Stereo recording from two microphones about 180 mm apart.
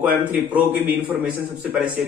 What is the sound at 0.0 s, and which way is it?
A man's voice, 10° right (ahead or behind).